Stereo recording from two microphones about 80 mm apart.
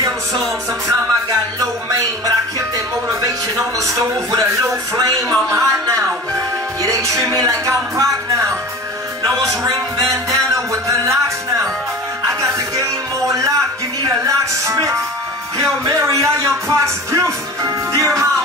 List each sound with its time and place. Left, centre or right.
1.9 s music: right
4.9 s a man's voice: right
6.8 s music: right
14.0 s music: right